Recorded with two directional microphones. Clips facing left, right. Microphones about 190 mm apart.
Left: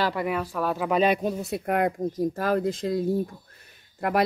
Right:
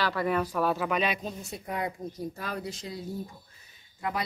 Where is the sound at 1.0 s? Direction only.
60° left (ahead or behind).